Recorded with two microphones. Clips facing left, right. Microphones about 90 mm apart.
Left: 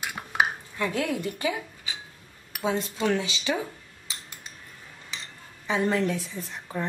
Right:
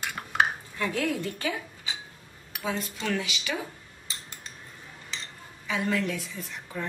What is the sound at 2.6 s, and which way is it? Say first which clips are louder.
Speech: left 5 dB; 25° left (ahead or behind).